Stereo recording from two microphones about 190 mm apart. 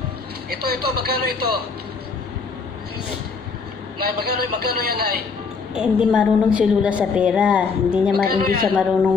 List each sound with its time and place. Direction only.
0.5 s a man's voice: 55° right (ahead or behind)
4.0 s a man's voice: 55° right (ahead or behind)
5.8 s a woman's voice: 5° right (ahead or behind)
8.2 s a woman's voice: 50° right (ahead or behind)